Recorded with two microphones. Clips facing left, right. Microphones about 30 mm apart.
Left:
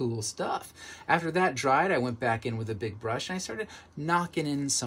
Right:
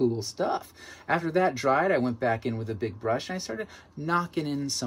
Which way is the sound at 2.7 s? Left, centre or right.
Left.